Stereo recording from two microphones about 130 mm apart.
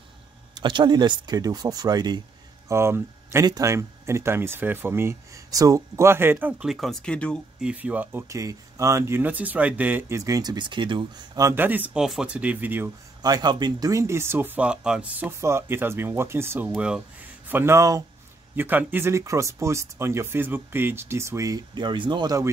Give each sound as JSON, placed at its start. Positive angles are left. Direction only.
{"t": 0.6, "sound": "speech", "side_deg": -35}
{"t": 2.7, "sound": "speech", "side_deg": -20}
{"t": 6.7, "sound": "speech", "side_deg": 0}
{"t": 7.6, "sound": "speech", "side_deg": -10}
{"t": 11.3, "sound": "speech", "side_deg": -20}
{"t": 13.2, "sound": "speech", "side_deg": -30}